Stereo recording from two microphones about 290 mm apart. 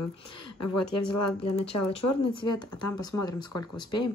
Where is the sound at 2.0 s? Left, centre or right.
Left.